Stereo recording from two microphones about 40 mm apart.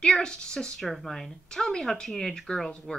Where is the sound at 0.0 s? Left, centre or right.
Left.